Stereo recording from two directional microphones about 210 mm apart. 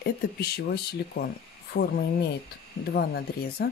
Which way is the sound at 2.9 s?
45° left (ahead or behind).